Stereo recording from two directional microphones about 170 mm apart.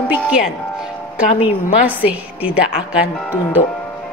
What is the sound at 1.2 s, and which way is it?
Speech, 55° left (ahead or behind).